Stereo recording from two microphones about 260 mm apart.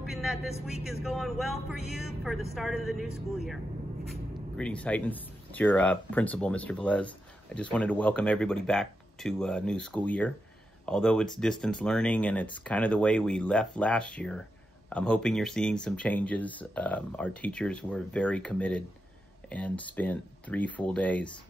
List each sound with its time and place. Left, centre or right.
0.0 s speech: centre
4.6 s speech: centre